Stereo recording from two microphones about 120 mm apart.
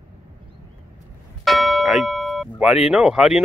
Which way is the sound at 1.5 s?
Centre (ahead or behind).